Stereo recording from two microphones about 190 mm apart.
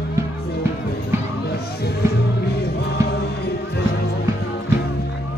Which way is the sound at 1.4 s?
55° left (ahead or behind).